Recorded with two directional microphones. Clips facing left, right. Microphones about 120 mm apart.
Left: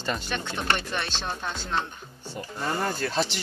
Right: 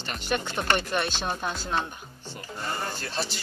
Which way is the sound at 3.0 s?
90° left.